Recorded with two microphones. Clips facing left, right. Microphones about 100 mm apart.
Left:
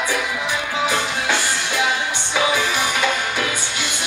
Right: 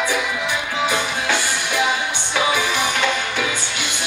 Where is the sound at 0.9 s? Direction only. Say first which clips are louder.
Even; 15° right (ahead or behind).